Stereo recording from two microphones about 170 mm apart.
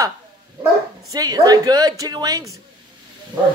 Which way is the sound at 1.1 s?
20° right (ahead or behind).